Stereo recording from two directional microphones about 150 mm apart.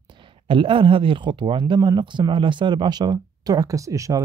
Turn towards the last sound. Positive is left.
turn(degrees=-20)  # may be behind; listen again after turning